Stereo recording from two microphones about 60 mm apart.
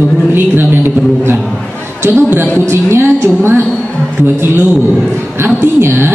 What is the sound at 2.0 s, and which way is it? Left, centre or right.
Speech, right.